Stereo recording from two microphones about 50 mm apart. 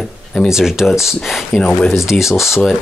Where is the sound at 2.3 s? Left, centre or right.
Left.